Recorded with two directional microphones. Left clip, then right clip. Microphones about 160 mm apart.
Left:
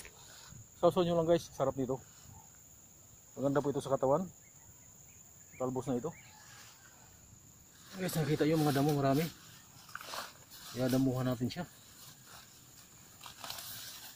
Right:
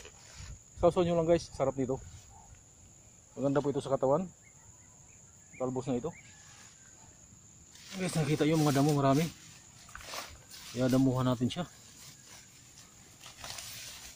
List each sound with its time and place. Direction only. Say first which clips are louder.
0.7 s speech: right 2 dB; centre (ahead or behind)
3.3 s speech: right 2 dB; 5° left (ahead or behind)
5.6 s speech: right 2 dB; 10° left (ahead or behind)
8.0 s speech: right 2 dB; 10° right (ahead or behind)
10.8 s speech: right 4 dB; 10° right (ahead or behind)